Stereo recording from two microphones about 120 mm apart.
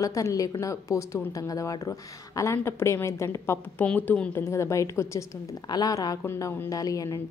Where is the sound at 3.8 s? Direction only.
10° left (ahead or behind).